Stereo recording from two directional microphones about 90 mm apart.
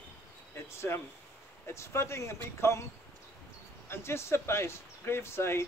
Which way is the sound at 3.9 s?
30° left (ahead or behind).